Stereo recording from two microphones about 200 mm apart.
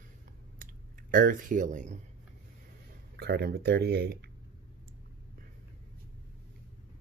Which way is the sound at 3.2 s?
55° right (ahead or behind).